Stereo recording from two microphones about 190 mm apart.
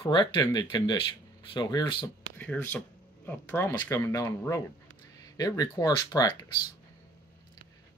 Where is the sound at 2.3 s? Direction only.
10° left (ahead or behind).